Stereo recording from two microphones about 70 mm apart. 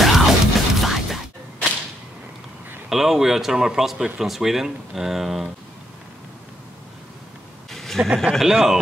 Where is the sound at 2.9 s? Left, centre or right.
Centre.